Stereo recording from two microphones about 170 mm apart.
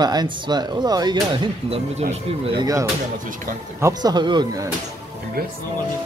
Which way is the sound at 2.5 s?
20° right (ahead or behind).